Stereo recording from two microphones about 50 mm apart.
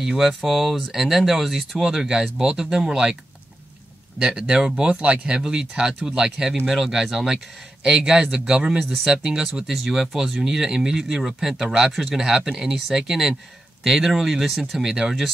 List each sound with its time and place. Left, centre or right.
0.0 s speech: centre
4.2 s speech: centre